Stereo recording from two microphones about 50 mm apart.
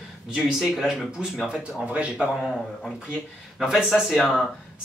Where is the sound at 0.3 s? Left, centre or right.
Centre.